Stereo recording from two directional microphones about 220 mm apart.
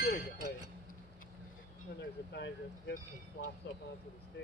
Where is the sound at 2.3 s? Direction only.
50° left (ahead or behind).